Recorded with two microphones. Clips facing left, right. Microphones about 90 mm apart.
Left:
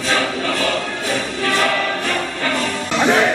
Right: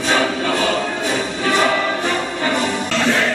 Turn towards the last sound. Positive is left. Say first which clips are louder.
# left 2 dB
turn(degrees=20)  # may be behind; listen again after turning